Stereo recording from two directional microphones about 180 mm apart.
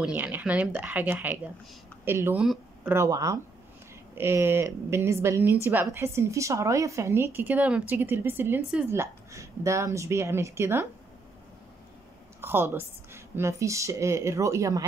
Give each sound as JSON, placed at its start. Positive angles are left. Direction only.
{"t": 0.0, "sound": "a woman's voice", "side_deg": -10}
{"t": 2.4, "sound": "a sound", "side_deg": -5}
{"t": 2.9, "sound": "a woman's voice", "side_deg": -15}
{"t": 12.4, "sound": "a woman's voice", "side_deg": -15}